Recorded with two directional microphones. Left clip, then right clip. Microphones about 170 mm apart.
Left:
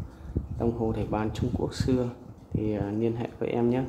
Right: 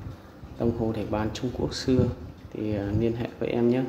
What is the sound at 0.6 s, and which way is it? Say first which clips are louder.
A man's voice: right 1 dB; 15° left (ahead or behind).